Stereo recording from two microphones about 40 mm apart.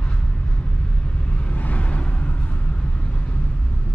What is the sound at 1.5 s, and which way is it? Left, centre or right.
Vehicle, left.